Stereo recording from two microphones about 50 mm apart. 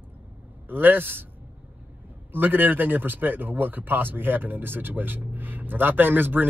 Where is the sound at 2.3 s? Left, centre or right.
Right.